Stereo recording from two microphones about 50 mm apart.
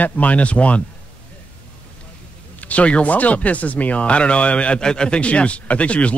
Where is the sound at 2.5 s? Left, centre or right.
Left.